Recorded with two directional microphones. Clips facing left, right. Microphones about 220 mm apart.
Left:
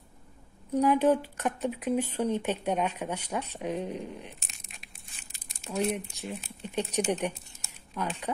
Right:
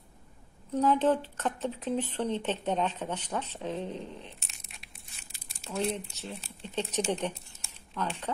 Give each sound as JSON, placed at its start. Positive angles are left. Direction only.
{"t": 0.7, "sound": "speech", "side_deg": 10}
{"t": 5.6, "sound": "speech", "side_deg": 15}